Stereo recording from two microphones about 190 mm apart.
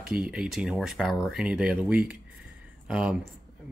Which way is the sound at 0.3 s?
5° right (ahead or behind).